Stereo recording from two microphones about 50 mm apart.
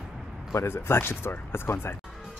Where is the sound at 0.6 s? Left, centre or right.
Left.